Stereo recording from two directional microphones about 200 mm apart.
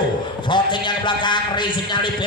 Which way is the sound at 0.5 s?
25° left (ahead or behind).